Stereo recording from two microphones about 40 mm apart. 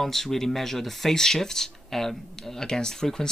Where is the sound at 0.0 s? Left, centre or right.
Centre.